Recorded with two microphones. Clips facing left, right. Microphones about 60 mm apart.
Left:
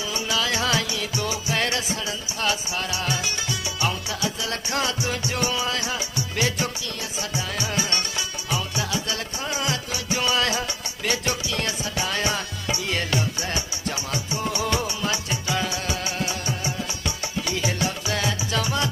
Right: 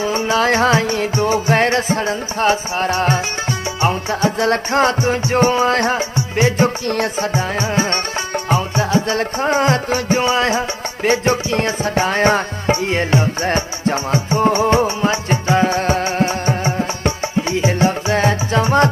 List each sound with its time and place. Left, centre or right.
0.0 s music: right
6.1 s music: right
6.9 s music: right